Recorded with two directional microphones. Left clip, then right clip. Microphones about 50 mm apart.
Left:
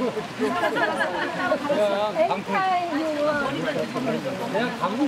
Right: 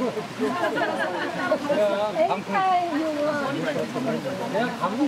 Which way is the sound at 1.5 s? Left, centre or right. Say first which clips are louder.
Right 1 dB; centre.